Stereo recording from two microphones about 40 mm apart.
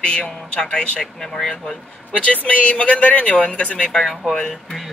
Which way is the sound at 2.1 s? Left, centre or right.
Left.